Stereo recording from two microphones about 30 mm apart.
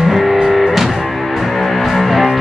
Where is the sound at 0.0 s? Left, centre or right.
Centre.